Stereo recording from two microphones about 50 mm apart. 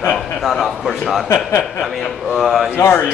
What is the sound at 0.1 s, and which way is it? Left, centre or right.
Speech, centre.